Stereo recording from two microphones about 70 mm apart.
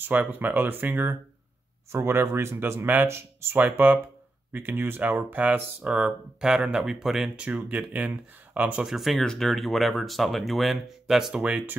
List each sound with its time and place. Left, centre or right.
0.0 s speech: right
3.5 s speech: right; by 7.2 s centre
7.3 s speech: centre
8.8 s speech: centre